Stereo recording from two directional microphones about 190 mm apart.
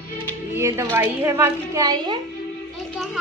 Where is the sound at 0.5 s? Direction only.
15° right (ahead or behind).